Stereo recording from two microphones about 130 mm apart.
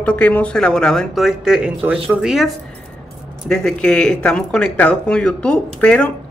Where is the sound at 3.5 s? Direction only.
5° left (ahead or behind).